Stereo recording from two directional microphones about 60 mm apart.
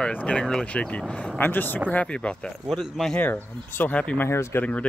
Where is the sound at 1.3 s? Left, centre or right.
Left.